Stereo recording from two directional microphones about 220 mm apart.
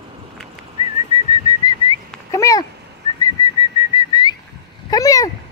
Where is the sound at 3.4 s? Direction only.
20° left (ahead or behind).